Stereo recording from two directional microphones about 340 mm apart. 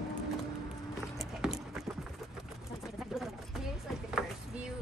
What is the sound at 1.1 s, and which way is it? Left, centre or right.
Horse, centre.